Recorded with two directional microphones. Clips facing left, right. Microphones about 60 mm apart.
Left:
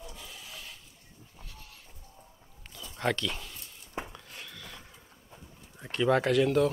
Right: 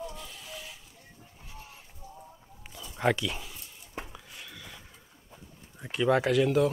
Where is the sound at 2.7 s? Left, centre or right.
Centre.